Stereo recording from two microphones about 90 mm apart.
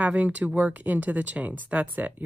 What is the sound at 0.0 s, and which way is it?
Speech, 15° right (ahead or behind).